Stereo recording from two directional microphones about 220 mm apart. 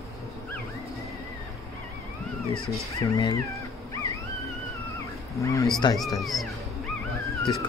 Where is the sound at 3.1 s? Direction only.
15° left (ahead or behind).